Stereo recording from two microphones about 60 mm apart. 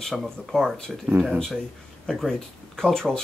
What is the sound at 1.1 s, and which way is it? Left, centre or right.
Speech, right.